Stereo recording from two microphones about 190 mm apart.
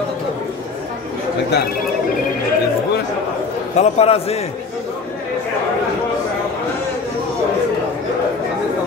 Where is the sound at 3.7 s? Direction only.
30° left (ahead or behind).